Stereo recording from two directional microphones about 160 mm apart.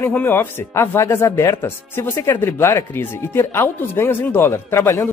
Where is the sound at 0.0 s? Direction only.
10° left (ahead or behind).